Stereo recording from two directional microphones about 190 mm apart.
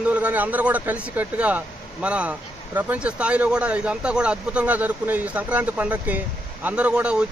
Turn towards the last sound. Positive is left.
turn(degrees=-5)  # may be behind; listen again after turning